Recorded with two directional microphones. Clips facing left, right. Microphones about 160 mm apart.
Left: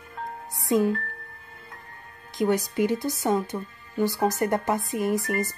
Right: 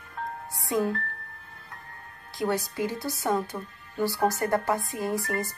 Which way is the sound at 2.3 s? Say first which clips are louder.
Left 4 dB; 20° left (ahead or behind).